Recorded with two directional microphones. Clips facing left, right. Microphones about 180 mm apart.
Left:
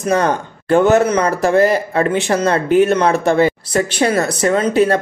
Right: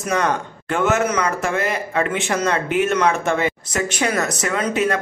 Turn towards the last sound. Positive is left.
turn(degrees=35)  # may be behind; listen again after turning